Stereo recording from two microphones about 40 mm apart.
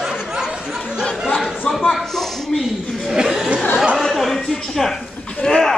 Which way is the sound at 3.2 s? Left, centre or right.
Centre.